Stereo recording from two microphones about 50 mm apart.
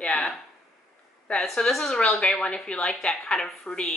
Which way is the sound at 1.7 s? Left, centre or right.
Centre.